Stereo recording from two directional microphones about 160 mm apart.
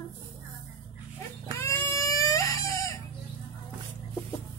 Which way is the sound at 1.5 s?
15° left (ahead or behind).